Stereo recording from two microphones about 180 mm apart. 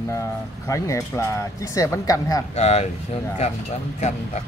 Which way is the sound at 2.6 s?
35° left (ahead or behind).